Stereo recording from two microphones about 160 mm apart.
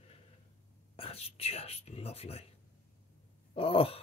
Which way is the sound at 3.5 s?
35° left (ahead or behind).